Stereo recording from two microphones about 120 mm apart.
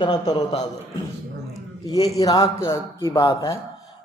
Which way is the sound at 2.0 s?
30° left (ahead or behind).